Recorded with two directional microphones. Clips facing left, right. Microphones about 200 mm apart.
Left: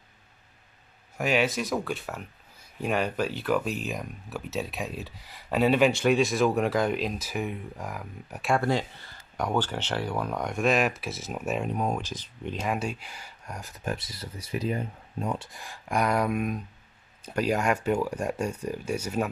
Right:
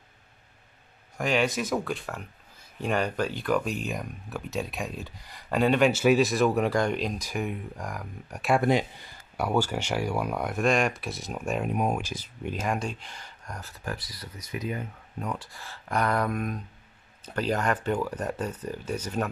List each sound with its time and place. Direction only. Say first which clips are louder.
1.1 s speech: even; 5° left (ahead or behind)
8.5 s speech: right 4 dB; 15° right (ahead or behind); by 11.7 s centre (ahead or behind)
11.7 s speech: right 1 dB; 10° right (ahead or behind)
12.6 s speech: left 1 dB; 5° left (ahead or behind)